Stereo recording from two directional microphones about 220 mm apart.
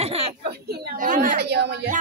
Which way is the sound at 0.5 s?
45° right (ahead or behind).